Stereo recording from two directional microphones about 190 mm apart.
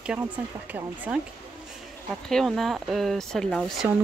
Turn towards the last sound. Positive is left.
turn(degrees=0)  # may be behind; listen again after turning